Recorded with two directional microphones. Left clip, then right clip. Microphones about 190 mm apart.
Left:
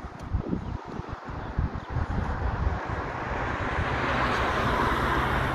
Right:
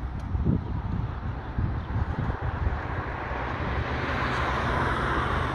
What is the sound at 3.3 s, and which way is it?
Vehicle, 20° left (ahead or behind).